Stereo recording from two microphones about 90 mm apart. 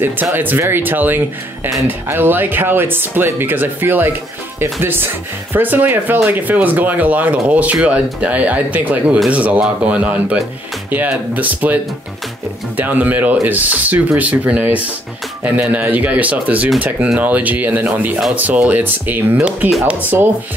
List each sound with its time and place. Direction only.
0.0 s speech: 25° right (ahead or behind)